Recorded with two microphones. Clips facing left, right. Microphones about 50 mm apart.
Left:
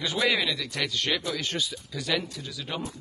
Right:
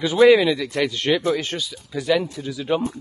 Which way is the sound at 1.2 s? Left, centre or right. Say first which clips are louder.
Right 9 dB; right.